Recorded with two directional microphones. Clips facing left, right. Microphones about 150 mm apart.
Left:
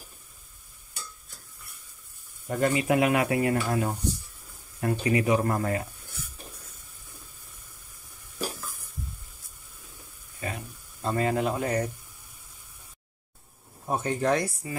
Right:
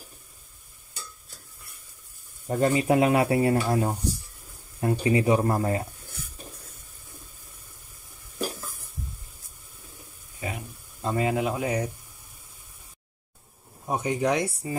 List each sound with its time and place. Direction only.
2.4 s speech: 30° right (ahead or behind)
5.0 s speech: 30° right (ahead or behind)
10.4 s a sound: 15° right (ahead or behind)
13.8 s speech: 15° right (ahead or behind)